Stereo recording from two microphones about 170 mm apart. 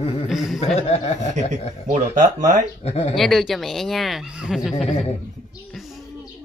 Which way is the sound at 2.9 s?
35° left (ahead or behind).